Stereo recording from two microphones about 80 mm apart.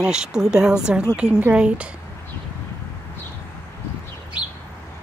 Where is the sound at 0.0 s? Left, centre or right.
Centre.